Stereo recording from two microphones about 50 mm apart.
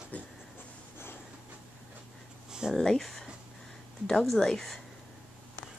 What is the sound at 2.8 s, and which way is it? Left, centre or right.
Speech, centre.